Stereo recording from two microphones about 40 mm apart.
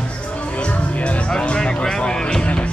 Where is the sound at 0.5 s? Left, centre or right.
Left.